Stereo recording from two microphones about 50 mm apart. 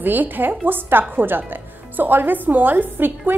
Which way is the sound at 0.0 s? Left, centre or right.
Right.